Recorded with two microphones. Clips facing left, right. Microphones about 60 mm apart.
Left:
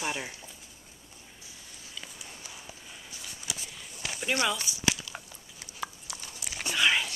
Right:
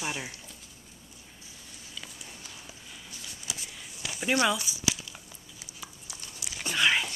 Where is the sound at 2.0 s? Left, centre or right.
Centre.